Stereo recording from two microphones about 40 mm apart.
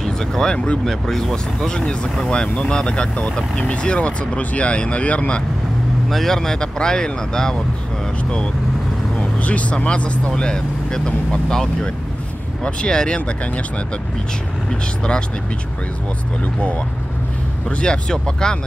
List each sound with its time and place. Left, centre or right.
0.0 s a sound: centre
0.8 s speech: centre; by 5.4 s left
6.0 s speech: centre
9.4 s speech: left
10.3 s speech: centre
14.7 s speech: left
17.6 s speech: left